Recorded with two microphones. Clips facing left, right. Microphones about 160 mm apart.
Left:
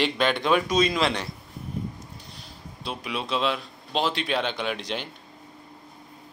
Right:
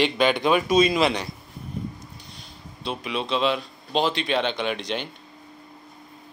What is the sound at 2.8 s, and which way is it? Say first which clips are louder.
Speech: right 3 dB; 5° left (ahead or behind).